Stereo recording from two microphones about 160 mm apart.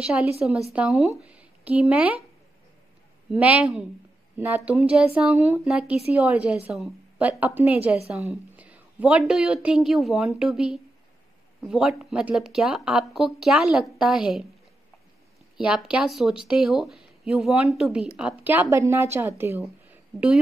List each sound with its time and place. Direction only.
0.0 s speech: 5° right (ahead or behind)
3.3 s a woman's voice: 10° right (ahead or behind)
15.5 s a woman's voice: 5° right (ahead or behind)
19.9 s a sound: 5° right (ahead or behind)